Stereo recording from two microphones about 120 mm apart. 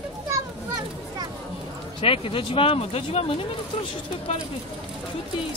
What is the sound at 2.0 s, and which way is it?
Speech, 50° left (ahead or behind).